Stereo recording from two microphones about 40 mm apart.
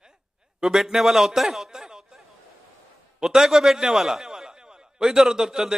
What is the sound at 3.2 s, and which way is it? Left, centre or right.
A man's voice, centre.